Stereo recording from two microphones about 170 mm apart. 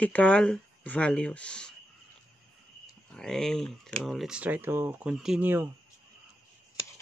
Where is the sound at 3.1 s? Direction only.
5° left (ahead or behind).